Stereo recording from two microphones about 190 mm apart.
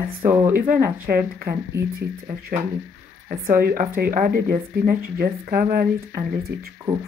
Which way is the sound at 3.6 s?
50° right (ahead or behind).